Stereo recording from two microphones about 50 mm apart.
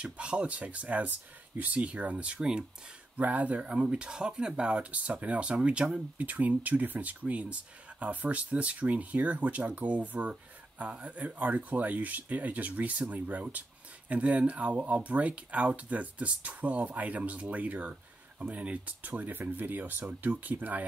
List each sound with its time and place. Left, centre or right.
0.0 s speech: right
3.2 s speech: right
6.1 s speech: right